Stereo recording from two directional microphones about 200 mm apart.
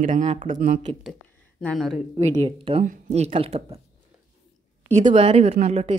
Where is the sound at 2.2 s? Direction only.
30° right (ahead or behind).